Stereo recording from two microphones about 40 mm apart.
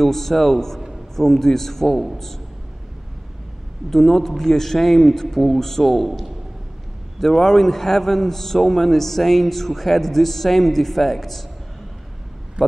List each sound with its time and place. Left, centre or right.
0.0 s a man's voice: centre
3.9 s a man's voice: centre
12.6 s speech: right